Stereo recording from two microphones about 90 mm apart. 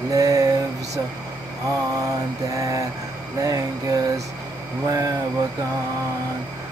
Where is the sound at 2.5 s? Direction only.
40° right (ahead or behind).